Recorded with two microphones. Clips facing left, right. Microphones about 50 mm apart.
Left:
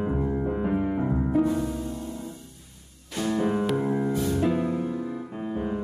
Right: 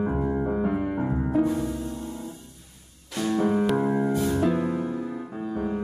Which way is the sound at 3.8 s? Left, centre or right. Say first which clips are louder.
Right 2 dB; right.